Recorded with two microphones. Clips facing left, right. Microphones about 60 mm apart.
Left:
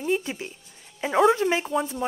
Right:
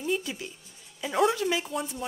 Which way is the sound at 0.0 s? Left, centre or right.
Left.